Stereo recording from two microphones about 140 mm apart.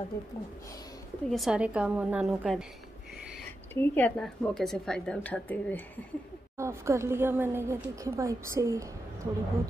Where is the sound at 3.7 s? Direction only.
15° left (ahead or behind).